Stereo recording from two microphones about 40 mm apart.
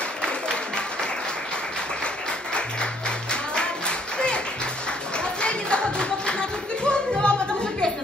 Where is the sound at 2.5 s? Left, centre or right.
Left.